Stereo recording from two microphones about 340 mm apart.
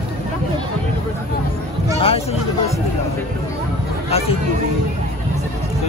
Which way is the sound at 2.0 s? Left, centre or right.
Centre.